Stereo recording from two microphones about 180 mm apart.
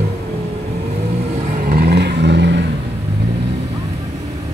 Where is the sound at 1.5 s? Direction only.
55° right (ahead or behind); by 2.6 s 70° right (ahead or behind).